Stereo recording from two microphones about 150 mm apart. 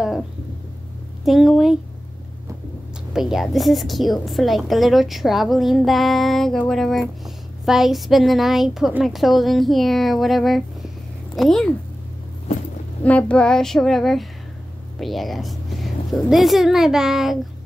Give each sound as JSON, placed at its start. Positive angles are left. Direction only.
{"t": 1.2, "sound": "a woman's voice", "side_deg": 0}
{"t": 3.1, "sound": "a woman's voice", "side_deg": -5}
{"t": 13.0, "sound": "a woman's voice", "side_deg": 10}